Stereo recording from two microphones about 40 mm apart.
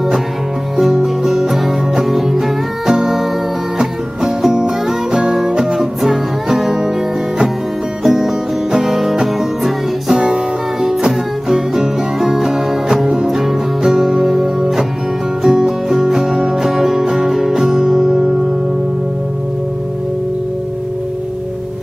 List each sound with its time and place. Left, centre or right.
0.7 s music: centre
4.6 s music: centre
5.8 s music: centre
8.0 s music: centre
10.2 s music: centre